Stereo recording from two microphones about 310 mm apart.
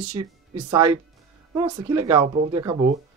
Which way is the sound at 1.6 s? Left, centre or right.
Centre.